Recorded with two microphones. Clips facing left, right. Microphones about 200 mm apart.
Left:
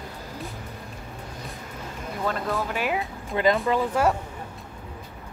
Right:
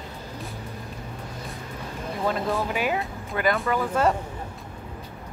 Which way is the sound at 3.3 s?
20° left (ahead or behind).